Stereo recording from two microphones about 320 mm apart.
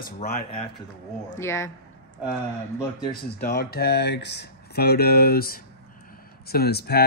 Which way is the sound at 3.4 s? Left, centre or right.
Left.